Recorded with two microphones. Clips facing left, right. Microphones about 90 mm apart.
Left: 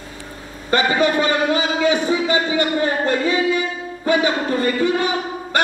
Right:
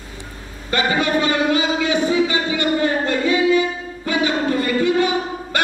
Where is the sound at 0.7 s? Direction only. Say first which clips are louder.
Left 2 dB; 30° left (ahead or behind).